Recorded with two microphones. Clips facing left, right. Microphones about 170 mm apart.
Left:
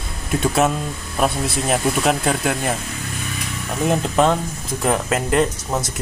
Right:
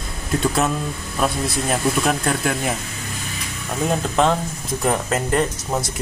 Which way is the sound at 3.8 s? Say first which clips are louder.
Left 2 dB; 5° left (ahead or behind).